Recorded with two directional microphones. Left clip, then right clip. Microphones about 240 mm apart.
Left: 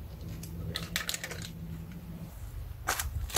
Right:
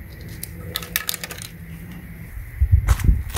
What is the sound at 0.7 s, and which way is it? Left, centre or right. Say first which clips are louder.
Typing: right 8 dB; right.